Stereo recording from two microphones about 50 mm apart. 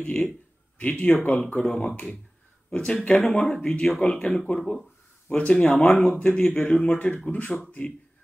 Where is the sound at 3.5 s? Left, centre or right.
Centre.